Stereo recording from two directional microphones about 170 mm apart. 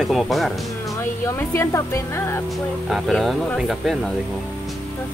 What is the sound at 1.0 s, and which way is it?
Speech, 15° left (ahead or behind).